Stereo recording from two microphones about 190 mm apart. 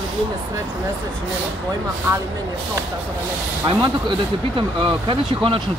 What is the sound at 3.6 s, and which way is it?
Speech, 25° right (ahead or behind).